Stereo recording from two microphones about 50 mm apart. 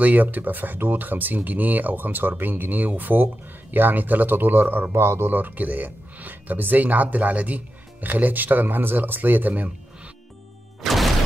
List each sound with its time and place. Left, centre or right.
0.0 s speech: right
5.3 s speech: right
10.8 s music: centre